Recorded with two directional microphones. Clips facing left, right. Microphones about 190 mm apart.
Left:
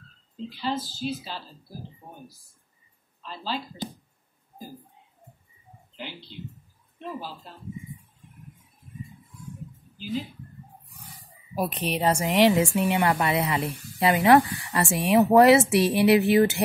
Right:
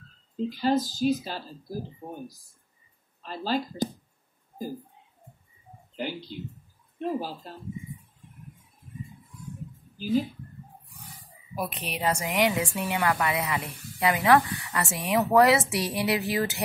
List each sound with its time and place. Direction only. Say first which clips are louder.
0.4 s speech: right 6 dB; 45° right (ahead or behind)
3.2 s speech: right 4 dB; 45° right (ahead or behind)
5.9 s speech: right 6 dB; 45° right (ahead or behind)
9.9 s speech: right 6 dB; 45° right (ahead or behind)
11.5 s a woman's voice: left 5 dB; 30° left (ahead or behind)